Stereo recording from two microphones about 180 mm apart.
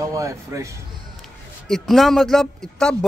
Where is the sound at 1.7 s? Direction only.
Centre (ahead or behind).